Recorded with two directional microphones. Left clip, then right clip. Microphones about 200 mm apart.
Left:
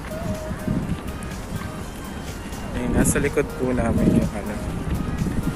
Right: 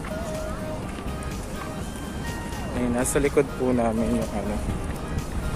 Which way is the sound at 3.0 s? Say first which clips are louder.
Even; 10° right (ahead or behind).